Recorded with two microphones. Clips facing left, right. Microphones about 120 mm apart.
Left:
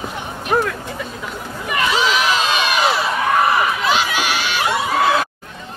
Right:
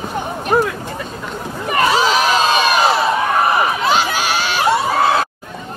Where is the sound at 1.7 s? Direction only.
40° right (ahead or behind).